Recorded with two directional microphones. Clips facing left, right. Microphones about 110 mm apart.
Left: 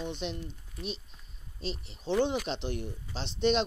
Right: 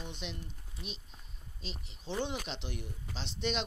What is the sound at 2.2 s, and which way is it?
Speech, 35° left (ahead or behind).